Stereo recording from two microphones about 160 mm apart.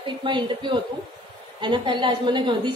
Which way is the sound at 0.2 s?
30° right (ahead or behind).